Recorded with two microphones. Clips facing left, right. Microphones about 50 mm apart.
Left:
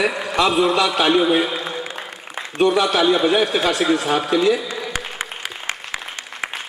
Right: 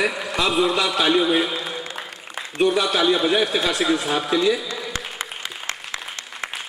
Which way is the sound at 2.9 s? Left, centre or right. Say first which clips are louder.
Left 3 dB; centre.